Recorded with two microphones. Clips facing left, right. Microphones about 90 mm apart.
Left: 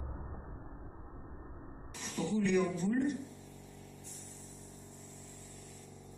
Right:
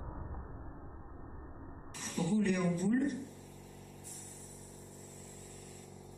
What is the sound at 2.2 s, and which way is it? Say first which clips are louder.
Speech: left 1 dB; 40° right (ahead or behind).